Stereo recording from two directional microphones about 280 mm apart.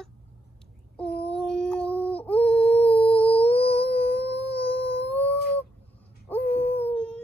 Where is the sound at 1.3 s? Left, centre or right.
Centre.